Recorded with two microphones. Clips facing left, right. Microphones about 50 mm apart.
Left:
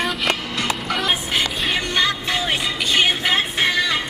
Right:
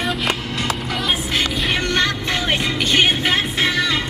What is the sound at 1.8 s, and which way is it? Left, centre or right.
Music, right.